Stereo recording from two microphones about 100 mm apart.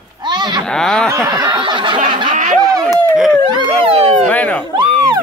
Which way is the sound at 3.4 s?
50° right (ahead or behind).